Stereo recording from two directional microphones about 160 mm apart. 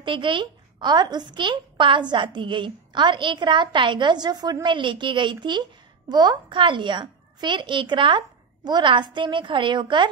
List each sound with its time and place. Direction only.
0.0 s a woman's voice: 30° right (ahead or behind)